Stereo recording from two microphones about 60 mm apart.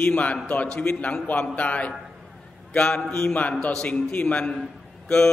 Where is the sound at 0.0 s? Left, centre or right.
Left.